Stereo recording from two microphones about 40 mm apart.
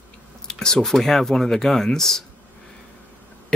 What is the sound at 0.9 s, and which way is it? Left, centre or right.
Speech, centre.